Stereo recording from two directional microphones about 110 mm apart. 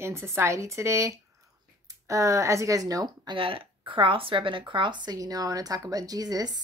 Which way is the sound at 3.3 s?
55° right (ahead or behind).